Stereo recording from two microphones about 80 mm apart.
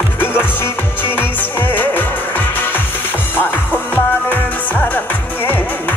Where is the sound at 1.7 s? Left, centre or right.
Left.